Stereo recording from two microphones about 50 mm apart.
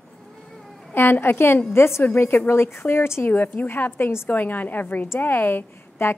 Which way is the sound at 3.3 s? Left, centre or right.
Left.